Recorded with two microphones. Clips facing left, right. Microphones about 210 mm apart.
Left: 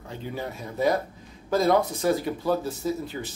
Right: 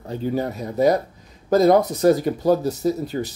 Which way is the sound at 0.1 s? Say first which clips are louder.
Right 10 dB; 40° right (ahead or behind).